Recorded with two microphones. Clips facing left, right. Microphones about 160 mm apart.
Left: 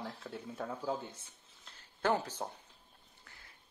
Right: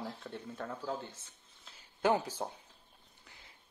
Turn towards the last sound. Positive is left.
turn(degrees=-20)  # may be behind; listen again after turning